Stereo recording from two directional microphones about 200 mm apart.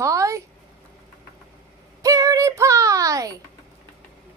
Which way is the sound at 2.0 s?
15° right (ahead or behind).